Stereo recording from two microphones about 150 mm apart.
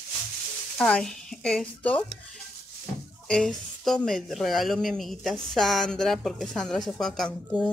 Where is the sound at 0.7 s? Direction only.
5° left (ahead or behind).